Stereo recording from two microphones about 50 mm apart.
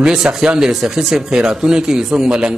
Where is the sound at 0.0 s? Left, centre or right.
Centre.